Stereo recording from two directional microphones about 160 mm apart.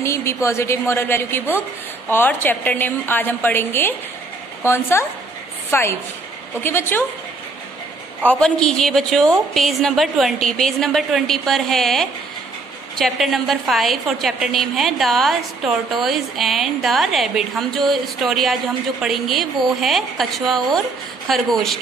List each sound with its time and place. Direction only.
0.0 s a woman's voice: 15° left (ahead or behind)
8.3 s a woman's voice: 5° left (ahead or behind)